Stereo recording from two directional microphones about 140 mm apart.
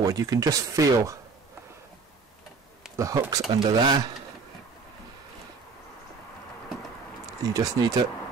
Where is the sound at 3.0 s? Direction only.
25° right (ahead or behind).